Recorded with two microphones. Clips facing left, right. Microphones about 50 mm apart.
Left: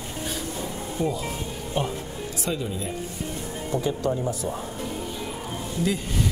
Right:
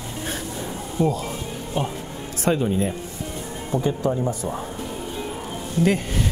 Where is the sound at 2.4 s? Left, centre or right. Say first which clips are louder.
Right 9 dB; right.